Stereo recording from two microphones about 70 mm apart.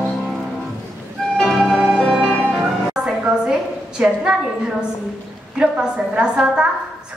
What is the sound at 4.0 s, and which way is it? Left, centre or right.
Speech, centre.